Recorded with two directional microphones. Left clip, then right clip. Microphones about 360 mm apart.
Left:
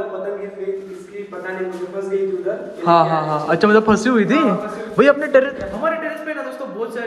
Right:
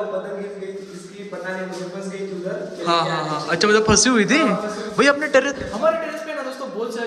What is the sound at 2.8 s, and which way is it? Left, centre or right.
A man's voice, centre.